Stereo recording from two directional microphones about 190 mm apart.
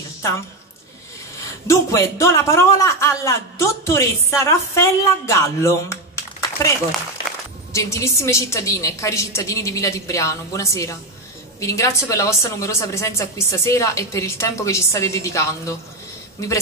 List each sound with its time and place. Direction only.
1.7 s a man's voice: 15° left (ahead or behind)
7.7 s a man's voice: 15° left (ahead or behind)